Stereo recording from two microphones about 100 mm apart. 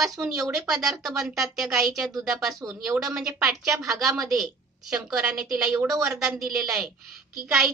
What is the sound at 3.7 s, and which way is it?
Speech, 30° right (ahead or behind).